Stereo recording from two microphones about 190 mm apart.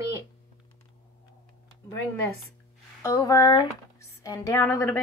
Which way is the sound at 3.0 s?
15° left (ahead or behind).